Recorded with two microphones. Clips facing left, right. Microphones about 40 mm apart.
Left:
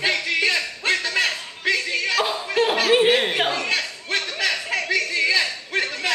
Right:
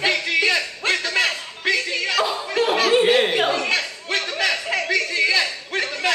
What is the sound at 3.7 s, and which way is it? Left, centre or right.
Chatter, centre.